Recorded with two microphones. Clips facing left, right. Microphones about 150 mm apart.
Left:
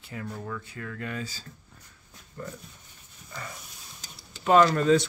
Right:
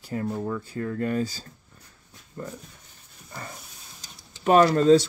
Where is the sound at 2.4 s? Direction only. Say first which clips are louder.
Right 2 dB; 25° right (ahead or behind).